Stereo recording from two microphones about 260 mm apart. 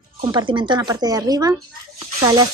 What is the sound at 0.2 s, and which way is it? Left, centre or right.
Speech, centre.